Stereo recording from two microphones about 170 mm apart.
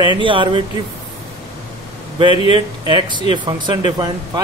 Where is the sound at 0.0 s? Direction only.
30° right (ahead or behind).